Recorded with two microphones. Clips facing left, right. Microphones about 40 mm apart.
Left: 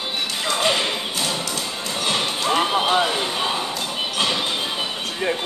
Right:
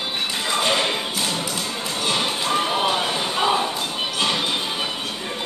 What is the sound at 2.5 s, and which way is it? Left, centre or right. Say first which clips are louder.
Music: left 3 dB; left.